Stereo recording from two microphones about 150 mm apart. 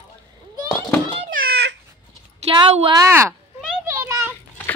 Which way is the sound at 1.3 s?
90° right.